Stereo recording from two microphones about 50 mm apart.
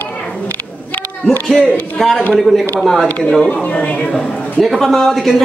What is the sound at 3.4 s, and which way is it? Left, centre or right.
Speech, left.